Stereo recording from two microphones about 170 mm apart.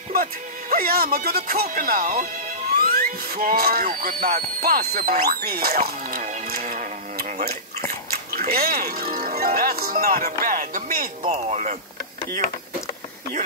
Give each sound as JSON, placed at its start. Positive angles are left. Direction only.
{"t": 0.1, "sound": "speech", "side_deg": -55}
{"t": 2.8, "sound": "music", "side_deg": -60}
{"t": 4.6, "sound": "speech", "side_deg": -65}
{"t": 6.6, "sound": "tick-tock", "side_deg": -50}
{"t": 8.1, "sound": "music", "side_deg": -60}
{"t": 11.2, "sound": "speech", "side_deg": -40}